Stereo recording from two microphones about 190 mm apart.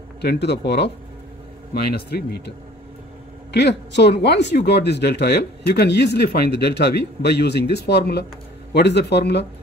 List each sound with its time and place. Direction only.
0.2 s speech: 60° left (ahead or behind)
3.5 s speech: 65° left (ahead or behind)